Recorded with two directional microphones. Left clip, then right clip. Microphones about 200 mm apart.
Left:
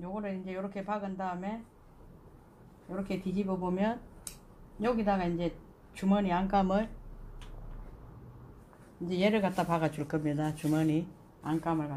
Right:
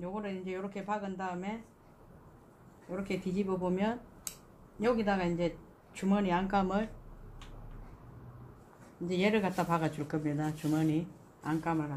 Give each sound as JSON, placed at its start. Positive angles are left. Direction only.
{"t": 0.0, "sound": "speech", "side_deg": 20}
{"t": 2.9, "sound": "speech", "side_deg": 20}
{"t": 9.0, "sound": "speech", "side_deg": 25}